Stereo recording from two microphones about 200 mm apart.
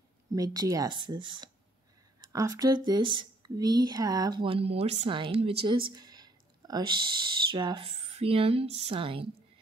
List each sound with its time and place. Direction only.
0.3 s speech: 20° right (ahead or behind)
5.6 s a sound: 25° right (ahead or behind)
7.5 s speech: 25° right (ahead or behind)